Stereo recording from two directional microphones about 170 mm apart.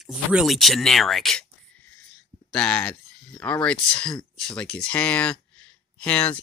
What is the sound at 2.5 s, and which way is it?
Speech, 5° left (ahead or behind).